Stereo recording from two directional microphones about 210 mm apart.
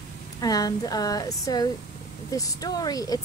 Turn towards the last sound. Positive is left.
turn(degrees=15)  # may be behind; listen again after turning